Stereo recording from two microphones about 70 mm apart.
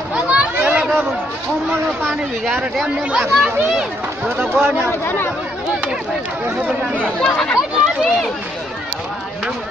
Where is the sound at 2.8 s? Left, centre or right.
Centre.